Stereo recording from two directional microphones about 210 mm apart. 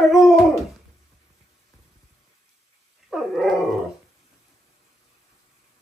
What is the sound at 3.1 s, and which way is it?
Dog, centre (ahead or behind).